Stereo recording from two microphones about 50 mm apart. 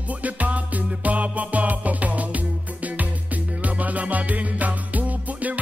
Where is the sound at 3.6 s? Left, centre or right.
Right.